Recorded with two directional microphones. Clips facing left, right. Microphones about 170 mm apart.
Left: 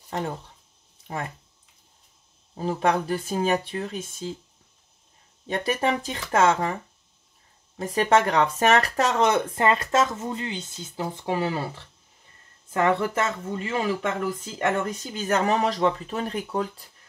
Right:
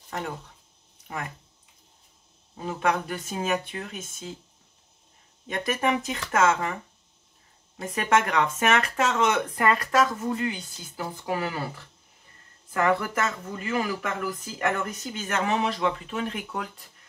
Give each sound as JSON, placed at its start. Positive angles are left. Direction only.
{"t": 0.1, "sound": "speech", "side_deg": 30}
{"t": 2.5, "sound": "speech", "side_deg": 35}
{"t": 5.5, "sound": "speech", "side_deg": 30}
{"t": 7.9, "sound": "speech", "side_deg": 35}
{"t": 12.7, "sound": "speech", "side_deg": 25}
{"t": 15.1, "sound": "speech", "side_deg": 35}